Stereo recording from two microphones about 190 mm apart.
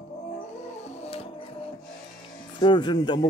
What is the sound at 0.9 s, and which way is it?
Music, 30° left (ahead or behind).